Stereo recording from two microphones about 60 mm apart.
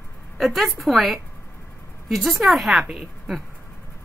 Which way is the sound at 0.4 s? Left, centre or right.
Centre.